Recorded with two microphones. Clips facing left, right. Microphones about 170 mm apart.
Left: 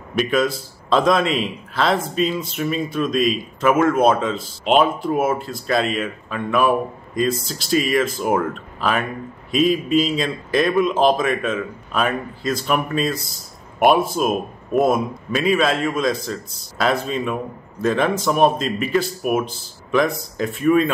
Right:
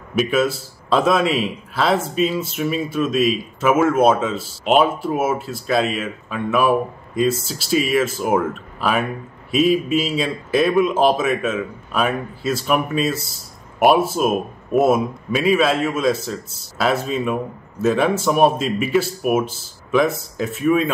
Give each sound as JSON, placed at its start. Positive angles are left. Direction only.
{"t": 0.1, "sound": "a man's voice", "side_deg": -5}